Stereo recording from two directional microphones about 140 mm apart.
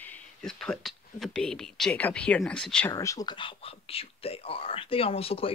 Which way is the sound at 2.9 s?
25° left (ahead or behind).